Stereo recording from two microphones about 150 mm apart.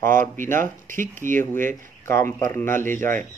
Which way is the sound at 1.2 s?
15° left (ahead or behind).